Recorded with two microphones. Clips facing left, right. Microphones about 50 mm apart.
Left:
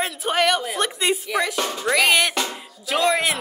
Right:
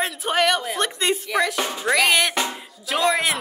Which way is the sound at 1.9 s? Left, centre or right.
Centre.